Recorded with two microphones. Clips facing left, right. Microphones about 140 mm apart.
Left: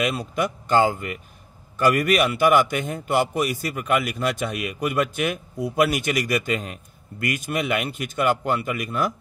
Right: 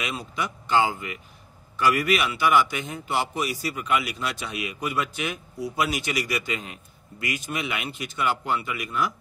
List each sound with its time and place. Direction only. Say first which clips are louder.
0.0 s a man's voice: left 7 dB; 50° left (ahead or behind)